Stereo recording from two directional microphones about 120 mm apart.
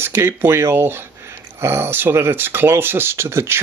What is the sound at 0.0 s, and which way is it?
Speech, 20° right (ahead or behind).